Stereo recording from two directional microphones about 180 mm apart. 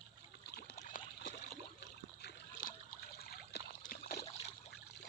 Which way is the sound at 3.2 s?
60° left (ahead or behind).